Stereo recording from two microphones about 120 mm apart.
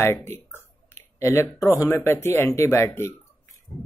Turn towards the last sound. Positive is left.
turn(degrees=20)  # may be behind; listen again after turning